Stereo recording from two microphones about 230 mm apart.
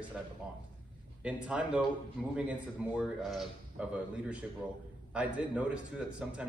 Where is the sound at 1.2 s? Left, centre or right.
Centre.